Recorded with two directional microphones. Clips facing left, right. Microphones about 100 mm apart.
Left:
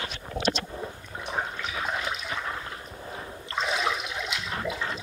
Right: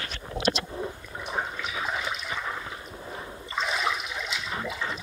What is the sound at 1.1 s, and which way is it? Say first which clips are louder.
Toilet flush: left 1 dB; centre (ahead or behind).